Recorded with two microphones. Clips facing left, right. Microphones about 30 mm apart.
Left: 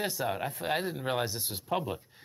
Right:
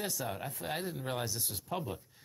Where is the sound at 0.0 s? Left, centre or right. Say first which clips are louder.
Left 6 dB; left.